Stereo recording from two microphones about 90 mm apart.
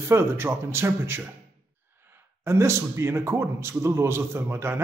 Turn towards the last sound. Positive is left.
turn(degrees=-25)  # may be behind; listen again after turning